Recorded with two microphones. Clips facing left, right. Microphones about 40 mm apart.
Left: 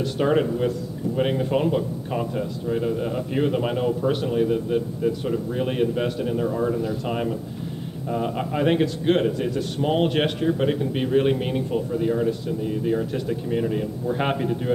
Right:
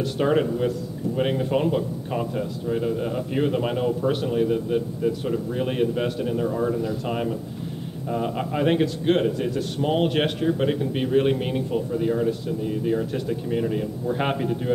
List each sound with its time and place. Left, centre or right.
0.0 s speech: centre